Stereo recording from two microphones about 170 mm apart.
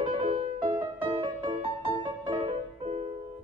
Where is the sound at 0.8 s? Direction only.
30° right (ahead or behind).